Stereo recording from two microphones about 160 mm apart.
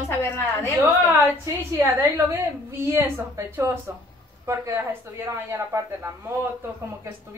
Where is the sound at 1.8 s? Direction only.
15° right (ahead or behind).